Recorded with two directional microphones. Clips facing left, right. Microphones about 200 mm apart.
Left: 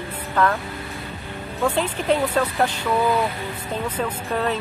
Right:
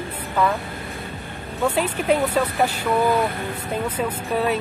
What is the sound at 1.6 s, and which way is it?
A woman's voice, 10° right (ahead or behind).